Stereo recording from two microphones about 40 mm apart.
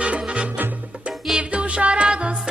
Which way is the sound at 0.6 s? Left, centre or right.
Right.